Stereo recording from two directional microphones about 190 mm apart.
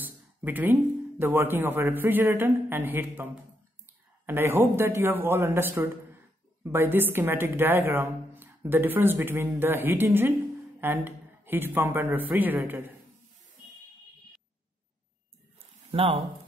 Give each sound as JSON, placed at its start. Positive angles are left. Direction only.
{"t": 0.0, "sound": "speech", "side_deg": -10}
{"t": 4.3, "sound": "a woman's voice", "side_deg": -10}
{"t": 15.9, "sound": "speech", "side_deg": -30}